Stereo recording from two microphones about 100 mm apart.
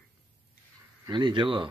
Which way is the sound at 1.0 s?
50° right (ahead or behind).